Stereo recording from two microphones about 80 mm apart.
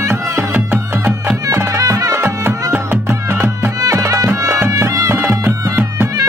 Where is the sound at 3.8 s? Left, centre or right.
Right.